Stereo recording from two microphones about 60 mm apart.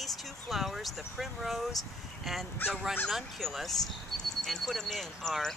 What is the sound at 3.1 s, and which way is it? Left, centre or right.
Speech, centre.